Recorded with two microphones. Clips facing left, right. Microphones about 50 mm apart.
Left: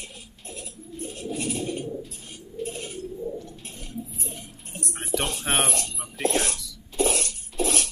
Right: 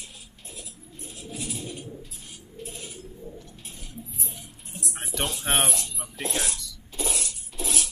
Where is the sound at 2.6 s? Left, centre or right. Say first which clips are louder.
Left 6 dB; left.